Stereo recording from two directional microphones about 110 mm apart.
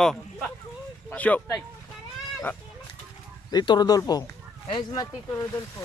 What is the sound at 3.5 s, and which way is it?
Speech, 40° left (ahead or behind).